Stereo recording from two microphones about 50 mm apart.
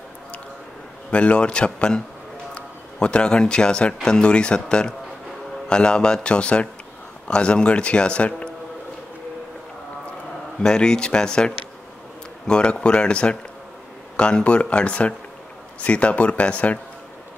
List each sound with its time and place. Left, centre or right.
1.1 s a man's voice: left
10.6 s a man's voice: centre